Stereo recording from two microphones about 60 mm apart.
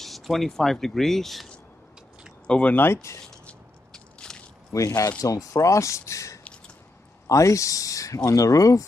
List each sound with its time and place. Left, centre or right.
0.0 s speech: centre
2.4 s speech: centre
2.7 s speech: left
3.9 s biting: centre
4.7 s speech: left